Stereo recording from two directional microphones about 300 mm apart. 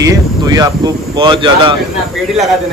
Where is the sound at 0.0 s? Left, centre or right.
Centre.